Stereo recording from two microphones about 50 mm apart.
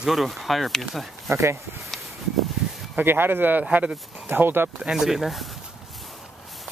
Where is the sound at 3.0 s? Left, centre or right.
Right.